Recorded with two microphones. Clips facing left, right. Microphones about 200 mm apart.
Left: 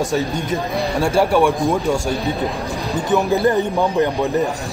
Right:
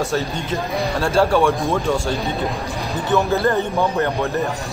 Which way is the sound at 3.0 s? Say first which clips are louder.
Left 1 dB; 15° left (ahead or behind).